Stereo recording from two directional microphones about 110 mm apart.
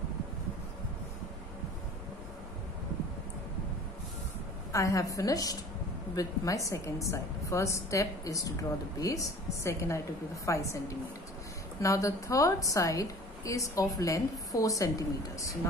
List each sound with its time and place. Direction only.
4.7 s a woman's voice: 30° left (ahead or behind)
11.8 s a woman's voice: 30° left (ahead or behind)